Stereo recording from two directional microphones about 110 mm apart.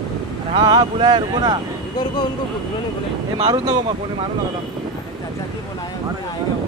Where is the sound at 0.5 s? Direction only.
40° right (ahead or behind).